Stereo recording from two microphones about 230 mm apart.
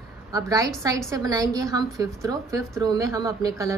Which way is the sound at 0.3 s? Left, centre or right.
Centre.